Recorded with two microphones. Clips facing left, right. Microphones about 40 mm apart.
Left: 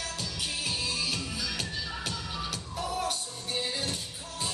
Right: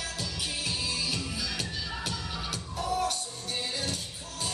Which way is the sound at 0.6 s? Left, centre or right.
Centre.